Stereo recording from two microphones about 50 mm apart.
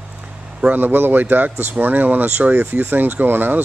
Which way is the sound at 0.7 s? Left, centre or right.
Right.